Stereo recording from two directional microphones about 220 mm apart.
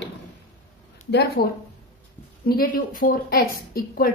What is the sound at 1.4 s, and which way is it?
A woman's voice, 45° left (ahead or behind).